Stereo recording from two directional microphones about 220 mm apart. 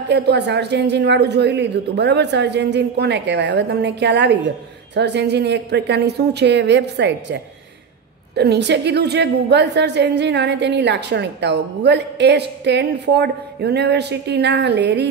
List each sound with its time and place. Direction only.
0.1 s a woman's voice: 50° right (ahead or behind)
8.4 s a woman's voice: 50° right (ahead or behind)